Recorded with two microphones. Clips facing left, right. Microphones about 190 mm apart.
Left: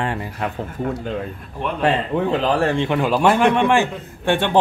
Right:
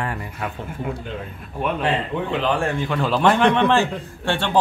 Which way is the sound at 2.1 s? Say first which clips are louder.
Left 3 dB; 40° left (ahead or behind).